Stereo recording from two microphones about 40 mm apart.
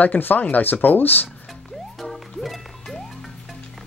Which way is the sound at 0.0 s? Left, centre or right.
Left.